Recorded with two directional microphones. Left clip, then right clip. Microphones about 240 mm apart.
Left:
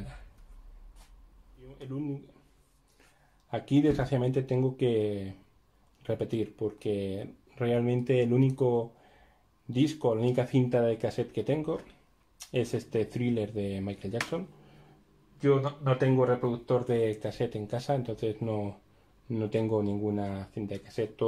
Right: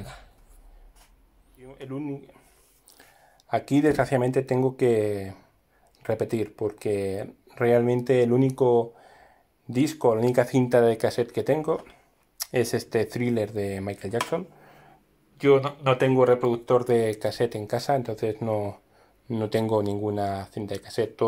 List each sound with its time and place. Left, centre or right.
1.8 s speech: right
3.4 s speech: right
15.4 s speech: right